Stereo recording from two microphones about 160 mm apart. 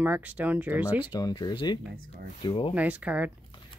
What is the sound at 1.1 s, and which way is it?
Speech, 25° left (ahead or behind).